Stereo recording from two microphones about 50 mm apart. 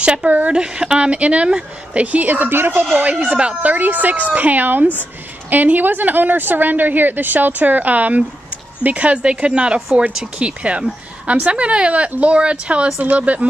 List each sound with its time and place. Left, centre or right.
0.0 s a woman's voice: right
3.3 s speech: right
3.7 s a woman's voice: right